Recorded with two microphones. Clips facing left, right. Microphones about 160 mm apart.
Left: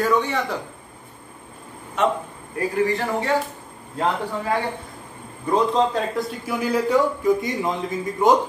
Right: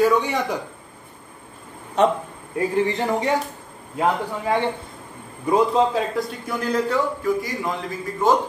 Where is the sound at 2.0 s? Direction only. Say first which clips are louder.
Right 3 dB; 35° right (ahead or behind).